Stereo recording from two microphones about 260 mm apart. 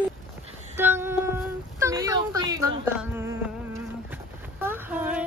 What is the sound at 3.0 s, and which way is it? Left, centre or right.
Music, centre.